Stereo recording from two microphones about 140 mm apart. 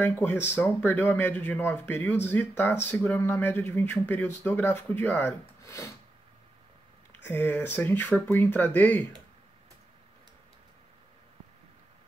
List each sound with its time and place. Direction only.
0.0 s speech: 15° left (ahead or behind)
7.2 s speech: 15° left (ahead or behind)